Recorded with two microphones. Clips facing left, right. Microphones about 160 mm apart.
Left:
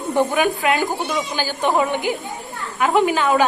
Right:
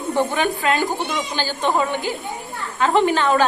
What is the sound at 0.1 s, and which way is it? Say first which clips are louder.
A woman's voice: left 2 dB; 10° left (ahead or behind).